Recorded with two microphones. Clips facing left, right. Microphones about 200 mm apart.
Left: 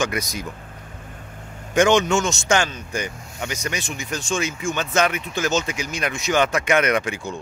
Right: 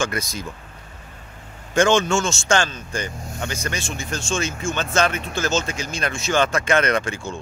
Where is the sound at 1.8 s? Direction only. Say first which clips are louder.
Left 1 dB; 20° left (ahead or behind).